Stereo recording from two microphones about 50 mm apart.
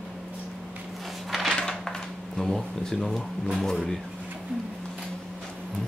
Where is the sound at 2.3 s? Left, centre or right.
Centre.